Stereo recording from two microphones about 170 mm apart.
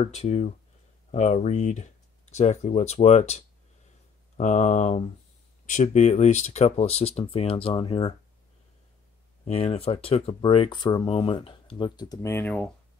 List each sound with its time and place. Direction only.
0.0 s speech: 40° left (ahead or behind)
9.4 s speech: 40° left (ahead or behind); by 12.7 s 10° left (ahead or behind)